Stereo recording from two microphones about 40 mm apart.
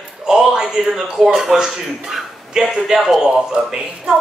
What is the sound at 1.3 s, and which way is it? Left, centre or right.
A woman's voice, centre.